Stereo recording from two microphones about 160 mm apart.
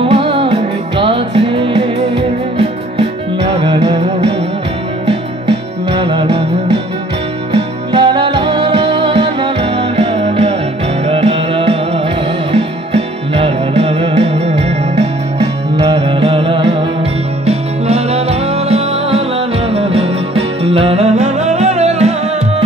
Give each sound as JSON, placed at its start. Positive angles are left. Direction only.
{"t": 0.0, "sound": "music", "side_deg": -35}
{"t": 3.4, "sound": "music", "side_deg": -30}
{"t": 5.9, "sound": "music", "side_deg": -30}
{"t": 7.5, "sound": "music", "side_deg": -30}